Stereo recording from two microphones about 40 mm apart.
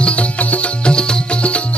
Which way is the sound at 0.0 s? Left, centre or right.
Left.